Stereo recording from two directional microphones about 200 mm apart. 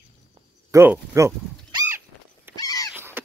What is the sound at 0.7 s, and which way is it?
Speech, 15° right (ahead or behind).